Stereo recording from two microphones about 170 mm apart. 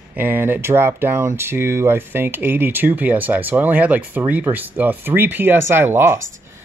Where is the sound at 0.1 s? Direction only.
10° right (ahead or behind).